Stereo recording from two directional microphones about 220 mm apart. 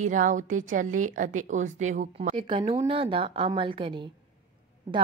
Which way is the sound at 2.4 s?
20° right (ahead or behind).